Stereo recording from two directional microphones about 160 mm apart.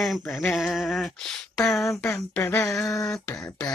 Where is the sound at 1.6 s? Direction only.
20° left (ahead or behind).